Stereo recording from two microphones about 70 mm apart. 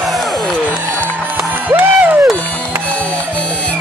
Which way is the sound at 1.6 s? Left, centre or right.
Right.